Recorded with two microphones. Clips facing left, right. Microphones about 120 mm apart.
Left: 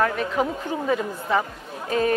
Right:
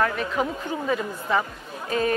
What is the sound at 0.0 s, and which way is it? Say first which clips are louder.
A woman's voice: left 2 dB; 40° left (ahead or behind).